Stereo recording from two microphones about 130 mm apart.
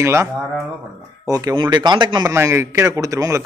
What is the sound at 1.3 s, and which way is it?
Speech, 30° right (ahead or behind).